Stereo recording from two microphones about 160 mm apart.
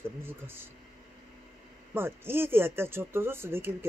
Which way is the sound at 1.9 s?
15° right (ahead or behind).